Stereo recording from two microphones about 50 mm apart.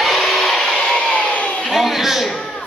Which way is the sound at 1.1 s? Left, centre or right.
Left.